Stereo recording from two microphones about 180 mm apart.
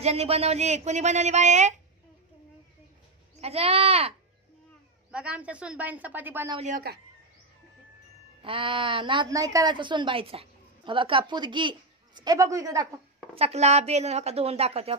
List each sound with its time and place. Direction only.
0.0 s speech: 35° right (ahead or behind)
3.3 s speech: 35° right (ahead or behind)
5.1 s a woman's voice: 5° right (ahead or behind)
8.4 s a woman's voice: 30° right (ahead or behind)
13.3 s speech: 35° right (ahead or behind)